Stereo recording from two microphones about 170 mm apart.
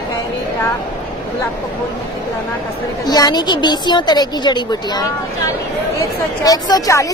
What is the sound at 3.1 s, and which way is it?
A woman's voice, 25° left (ahead or behind).